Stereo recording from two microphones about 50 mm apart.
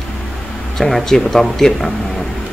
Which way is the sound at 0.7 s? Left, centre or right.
Centre.